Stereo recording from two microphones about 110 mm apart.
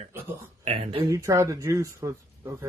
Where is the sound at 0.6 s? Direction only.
70° right (ahead or behind).